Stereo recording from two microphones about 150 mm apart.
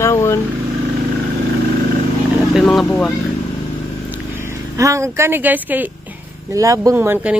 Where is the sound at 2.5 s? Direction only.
Centre (ahead or behind).